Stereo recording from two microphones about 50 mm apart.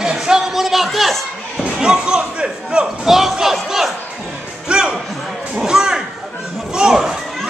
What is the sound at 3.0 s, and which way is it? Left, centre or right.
Crowd, centre.